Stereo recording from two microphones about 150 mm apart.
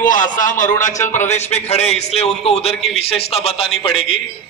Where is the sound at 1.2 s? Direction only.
50° left (ahead or behind).